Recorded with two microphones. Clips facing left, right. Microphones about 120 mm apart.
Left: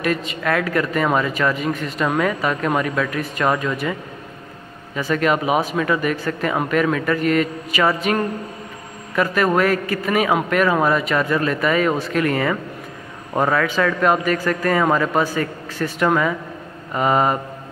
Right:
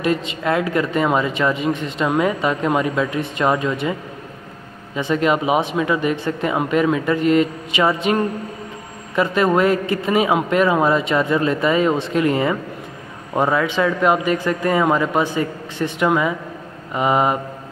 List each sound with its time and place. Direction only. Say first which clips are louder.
0.0 s speech: right 2 dB; 25° right (ahead or behind)
4.9 s speech: right 1 dB; 20° right (ahead or behind)